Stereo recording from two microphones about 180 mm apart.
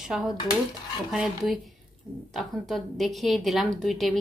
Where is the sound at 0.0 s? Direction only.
5° right (ahead or behind).